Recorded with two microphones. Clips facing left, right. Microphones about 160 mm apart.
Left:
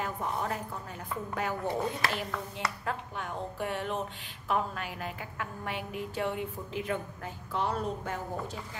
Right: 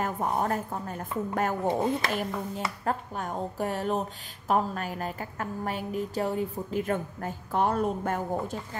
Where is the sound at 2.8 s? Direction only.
40° right (ahead or behind).